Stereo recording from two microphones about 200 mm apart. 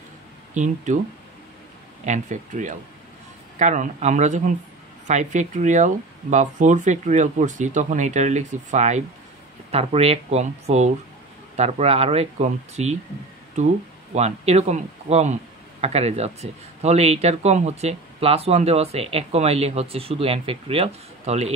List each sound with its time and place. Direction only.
2.0 s speech: 40° right (ahead or behind)
14.1 s speech: 35° right (ahead or behind)